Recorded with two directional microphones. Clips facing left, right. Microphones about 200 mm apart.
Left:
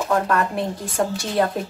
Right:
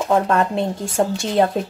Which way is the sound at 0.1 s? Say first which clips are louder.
Right 4 dB; 25° right (ahead or behind).